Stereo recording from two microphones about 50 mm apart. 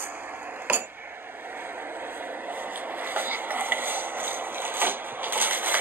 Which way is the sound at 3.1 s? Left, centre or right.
Right.